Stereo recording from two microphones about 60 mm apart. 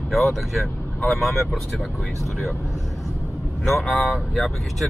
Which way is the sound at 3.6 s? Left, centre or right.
Centre.